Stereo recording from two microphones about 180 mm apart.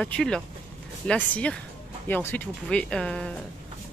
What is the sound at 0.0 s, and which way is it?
Speech, 5° left (ahead or behind).